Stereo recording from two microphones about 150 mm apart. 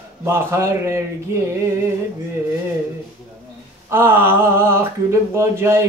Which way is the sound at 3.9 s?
15° right (ahead or behind).